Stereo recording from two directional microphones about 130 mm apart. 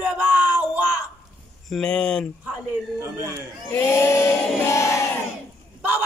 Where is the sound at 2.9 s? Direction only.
25° right (ahead or behind).